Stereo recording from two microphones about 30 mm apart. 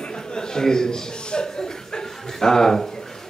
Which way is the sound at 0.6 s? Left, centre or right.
Left.